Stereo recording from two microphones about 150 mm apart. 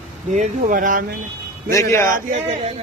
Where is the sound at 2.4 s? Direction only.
45° right (ahead or behind).